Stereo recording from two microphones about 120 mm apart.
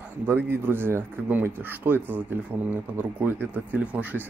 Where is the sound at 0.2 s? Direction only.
15° right (ahead or behind).